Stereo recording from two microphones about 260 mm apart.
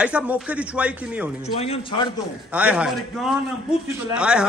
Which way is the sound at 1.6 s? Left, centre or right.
Left.